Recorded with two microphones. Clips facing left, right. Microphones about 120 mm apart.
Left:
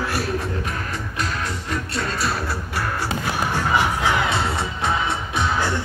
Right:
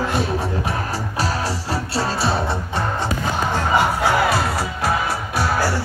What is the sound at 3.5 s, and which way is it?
Music, 15° right (ahead or behind).